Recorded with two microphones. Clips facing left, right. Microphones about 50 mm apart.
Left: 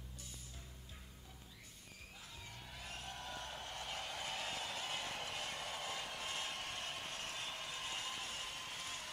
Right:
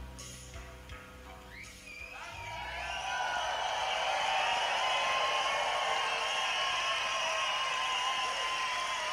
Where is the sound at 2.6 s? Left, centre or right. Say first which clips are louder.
Right 13 dB; right.